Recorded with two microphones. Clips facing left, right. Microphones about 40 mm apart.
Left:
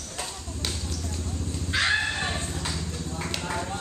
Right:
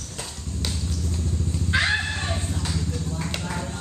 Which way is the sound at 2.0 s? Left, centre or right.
Centre.